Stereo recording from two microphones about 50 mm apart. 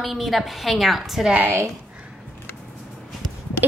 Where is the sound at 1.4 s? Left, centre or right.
Right.